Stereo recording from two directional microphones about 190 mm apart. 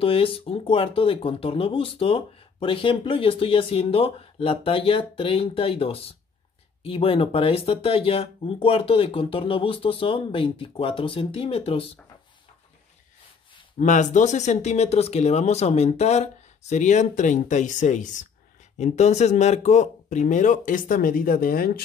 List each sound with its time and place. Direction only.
0.0 s speech: 30° left (ahead or behind)
13.7 s speech: 40° left (ahead or behind)